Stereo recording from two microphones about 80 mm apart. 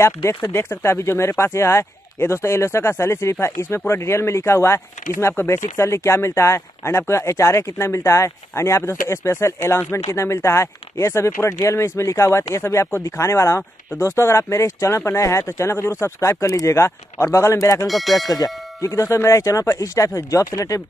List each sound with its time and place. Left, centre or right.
0.0 s speech: left
17.8 s bell: centre
18.2 s clang: left
18.8 s speech: left